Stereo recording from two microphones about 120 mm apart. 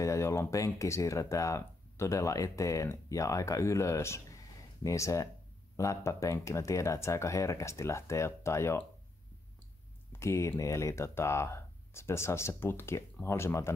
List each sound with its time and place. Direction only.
0.0 s speech: 25° left (ahead or behind)
10.1 s speech: 25° left (ahead or behind)